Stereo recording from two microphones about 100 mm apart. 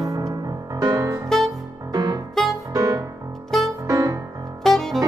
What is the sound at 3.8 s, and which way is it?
Music, 35° right (ahead or behind).